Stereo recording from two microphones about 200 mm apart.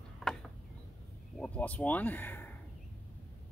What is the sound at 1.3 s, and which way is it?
Speech, 5° left (ahead or behind).